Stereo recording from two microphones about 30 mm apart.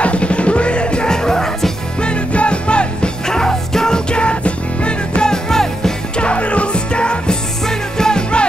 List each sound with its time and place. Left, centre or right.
0.0 s music: left
1.0 s music: left
2.0 s music: left
3.3 s music: left
4.1 s music: left
5.3 s music: centre
6.1 s music: left
7.6 s music: left